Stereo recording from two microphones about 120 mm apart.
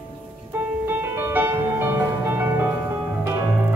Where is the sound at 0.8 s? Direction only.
15° right (ahead or behind).